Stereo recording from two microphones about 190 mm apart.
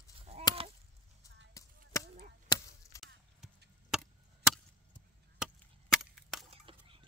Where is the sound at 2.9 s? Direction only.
15° left (ahead or behind).